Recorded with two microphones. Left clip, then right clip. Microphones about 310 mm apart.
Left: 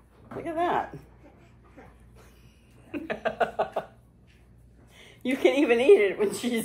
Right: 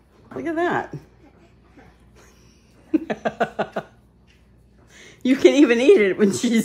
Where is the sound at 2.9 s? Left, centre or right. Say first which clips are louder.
Right 7 dB; right.